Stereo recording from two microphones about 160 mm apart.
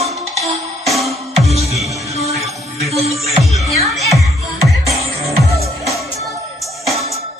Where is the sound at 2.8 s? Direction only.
40° right (ahead or behind).